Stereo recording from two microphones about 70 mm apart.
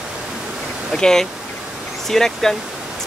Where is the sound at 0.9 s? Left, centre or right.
Centre.